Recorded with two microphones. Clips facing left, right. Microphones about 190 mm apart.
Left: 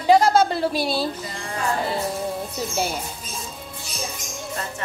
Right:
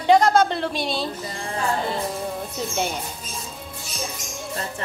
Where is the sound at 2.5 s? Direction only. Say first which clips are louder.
Even; 5° left (ahead or behind).